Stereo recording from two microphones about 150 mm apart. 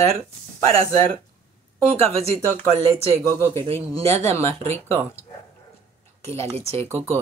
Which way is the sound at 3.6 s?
40° right (ahead or behind).